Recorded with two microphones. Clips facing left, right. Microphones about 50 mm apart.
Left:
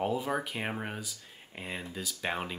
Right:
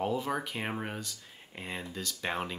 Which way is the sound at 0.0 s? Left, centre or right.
Centre.